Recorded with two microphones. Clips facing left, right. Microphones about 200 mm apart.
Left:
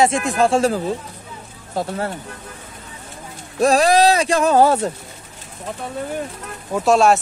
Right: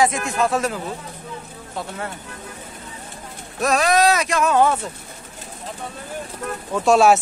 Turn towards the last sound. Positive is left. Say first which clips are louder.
# even
turn(degrees=0)  # may be behind; listen again after turning